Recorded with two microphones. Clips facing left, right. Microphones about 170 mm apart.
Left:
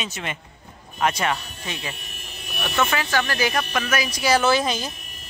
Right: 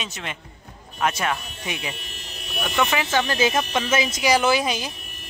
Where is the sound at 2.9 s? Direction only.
20° right (ahead or behind).